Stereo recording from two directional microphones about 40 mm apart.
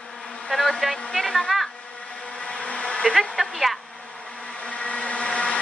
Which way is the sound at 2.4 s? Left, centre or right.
Left.